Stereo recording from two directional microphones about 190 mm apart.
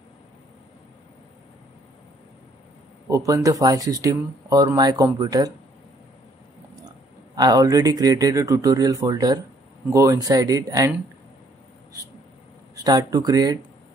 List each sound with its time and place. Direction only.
3.1 s speech: 15° right (ahead or behind)
7.3 s speech: 20° right (ahead or behind)
12.8 s speech: 20° right (ahead or behind)